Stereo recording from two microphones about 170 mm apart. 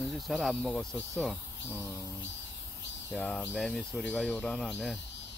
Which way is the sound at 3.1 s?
Centre (ahead or behind).